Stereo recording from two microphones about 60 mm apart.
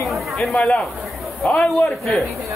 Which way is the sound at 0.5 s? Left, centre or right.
Left.